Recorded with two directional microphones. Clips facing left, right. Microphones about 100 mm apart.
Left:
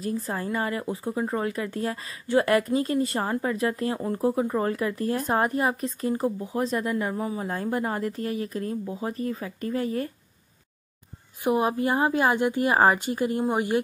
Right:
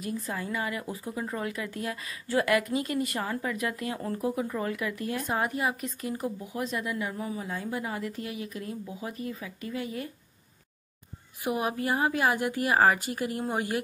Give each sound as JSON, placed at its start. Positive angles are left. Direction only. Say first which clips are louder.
{"t": 0.0, "sound": "speech", "louder": "left 4 dB", "side_deg": 35}
{"t": 11.4, "sound": "a woman's voice", "louder": "left 6 dB", "side_deg": 30}